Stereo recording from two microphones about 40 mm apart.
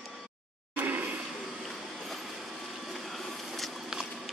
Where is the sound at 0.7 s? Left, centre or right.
Right.